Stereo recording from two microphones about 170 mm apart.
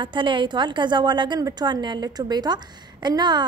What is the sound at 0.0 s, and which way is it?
A woman's voice, 30° right (ahead or behind).